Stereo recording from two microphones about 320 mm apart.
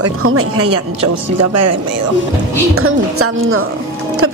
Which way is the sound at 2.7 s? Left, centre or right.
Right.